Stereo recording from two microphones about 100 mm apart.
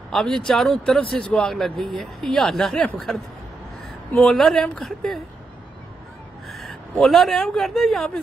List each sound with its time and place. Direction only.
0.1 s speech: 5° left (ahead or behind)
4.1 s speech: 10° left (ahead or behind)
6.5 s speech: centre (ahead or behind)